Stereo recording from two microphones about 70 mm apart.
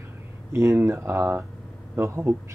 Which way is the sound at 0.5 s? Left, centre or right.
Right.